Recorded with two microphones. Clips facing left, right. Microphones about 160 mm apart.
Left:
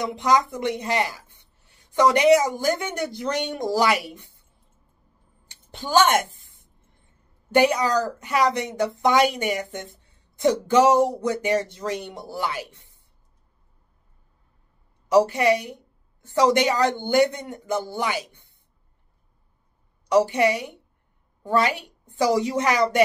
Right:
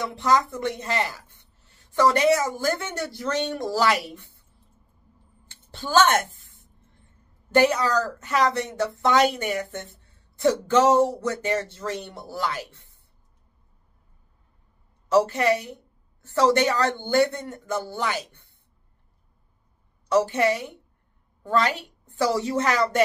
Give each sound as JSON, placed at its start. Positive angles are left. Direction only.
{"t": 0.0, "sound": "speech", "side_deg": 15}
{"t": 5.5, "sound": "a sound", "side_deg": 15}
{"t": 7.5, "sound": "speech", "side_deg": 15}
{"t": 15.0, "sound": "speech", "side_deg": 15}
{"t": 20.1, "sound": "speech", "side_deg": 15}